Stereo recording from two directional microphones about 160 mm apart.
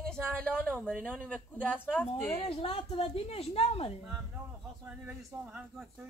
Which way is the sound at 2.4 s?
35° left (ahead or behind).